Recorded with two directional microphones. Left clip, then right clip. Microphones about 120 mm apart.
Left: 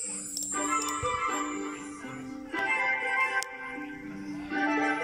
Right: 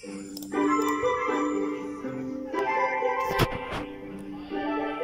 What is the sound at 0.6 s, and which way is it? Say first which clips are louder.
Music: right 6 dB; 60° right (ahead or behind).